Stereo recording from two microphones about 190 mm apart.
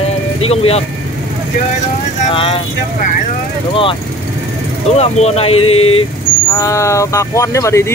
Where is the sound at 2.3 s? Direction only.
30° left (ahead or behind).